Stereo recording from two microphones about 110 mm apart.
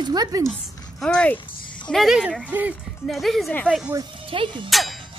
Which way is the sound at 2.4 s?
15° right (ahead or behind).